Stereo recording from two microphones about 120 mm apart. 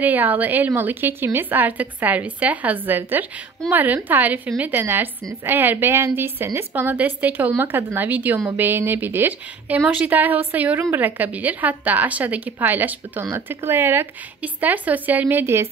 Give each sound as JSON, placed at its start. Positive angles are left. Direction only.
{"t": 0.0, "sound": "a woman's voice", "side_deg": -15}